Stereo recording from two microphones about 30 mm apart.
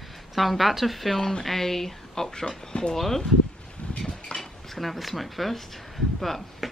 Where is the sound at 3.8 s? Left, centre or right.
Left.